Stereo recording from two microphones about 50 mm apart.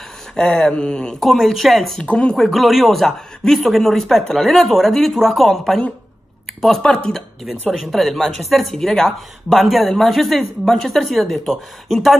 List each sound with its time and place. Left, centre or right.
0.4 s speech: centre
0.7 s speech: centre
1.2 s speech: centre
2.0 s speech: left
2.3 s speech: centre
6.8 s speech: centre
7.7 s speech: centre